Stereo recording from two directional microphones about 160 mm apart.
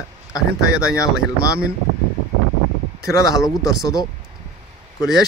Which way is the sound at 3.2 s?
20° left (ahead or behind).